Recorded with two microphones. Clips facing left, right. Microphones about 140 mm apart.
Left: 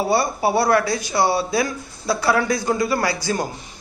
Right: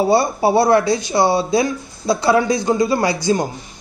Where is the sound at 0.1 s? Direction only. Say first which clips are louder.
Right 4 dB; 25° right (ahead or behind).